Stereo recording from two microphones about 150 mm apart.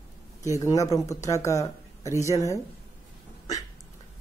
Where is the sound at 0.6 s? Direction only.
20° left (ahead or behind).